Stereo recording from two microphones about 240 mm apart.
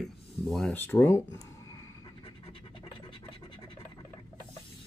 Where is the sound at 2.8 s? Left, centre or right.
Left.